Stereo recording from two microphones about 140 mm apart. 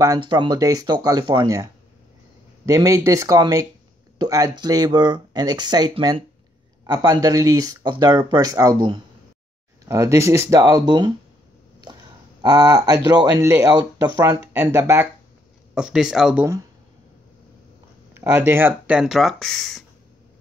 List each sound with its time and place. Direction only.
0.0 s speech: 30° right (ahead or behind)
9.8 s speech: 20° right (ahead or behind)
15.7 s speech: 5° right (ahead or behind)
18.1 s speech: 15° right (ahead or behind); by 19.8 s 5° left (ahead or behind)